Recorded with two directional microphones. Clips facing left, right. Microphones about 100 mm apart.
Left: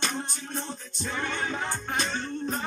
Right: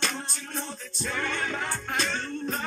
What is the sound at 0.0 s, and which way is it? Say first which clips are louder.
Music: left 1 dB; 20° left (ahead or behind).